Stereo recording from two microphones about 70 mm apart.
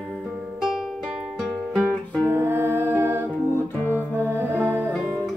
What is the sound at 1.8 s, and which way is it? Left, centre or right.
Music, right.